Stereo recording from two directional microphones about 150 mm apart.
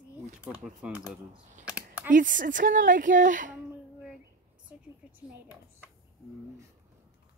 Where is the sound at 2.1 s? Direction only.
60° right (ahead or behind).